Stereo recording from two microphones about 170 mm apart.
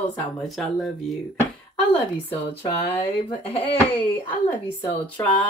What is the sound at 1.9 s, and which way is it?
A woman's voice, 30° left (ahead or behind).